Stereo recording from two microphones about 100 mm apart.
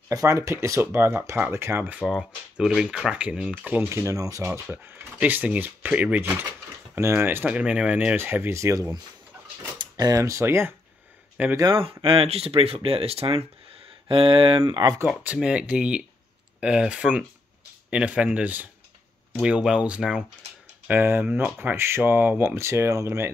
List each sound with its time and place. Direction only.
0.1 s speech: 30° right (ahead or behind)
2.0 s speech: 5° right (ahead or behind)
3.9 s speech: 30° right (ahead or behind)
4.8 s speech: 20° right (ahead or behind)
7.0 s speech: 25° right (ahead or behind)
9.8 s speech: 40° right (ahead or behind); by 10.7 s 25° right (ahead or behind)
11.4 s speech: 15° right (ahead or behind)
11.7 s speech: 65° right (ahead or behind); by 13.5 s 90° right
14.0 s speech: 60° right (ahead or behind)
14.6 s speech: 40° right (ahead or behind)
15.0 s speech: 10° right (ahead or behind)
20.8 s speech: 20° right (ahead or behind)